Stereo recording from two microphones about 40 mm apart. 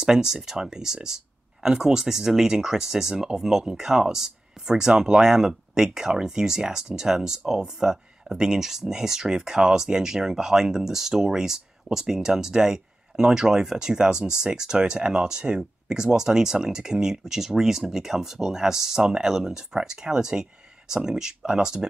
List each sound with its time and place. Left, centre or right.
0.0 s speech: centre